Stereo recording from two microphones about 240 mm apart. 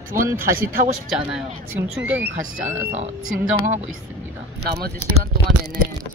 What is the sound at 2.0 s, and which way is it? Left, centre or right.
Speech, centre.